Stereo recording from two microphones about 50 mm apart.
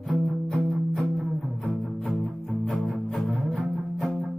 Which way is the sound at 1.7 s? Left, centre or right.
Centre.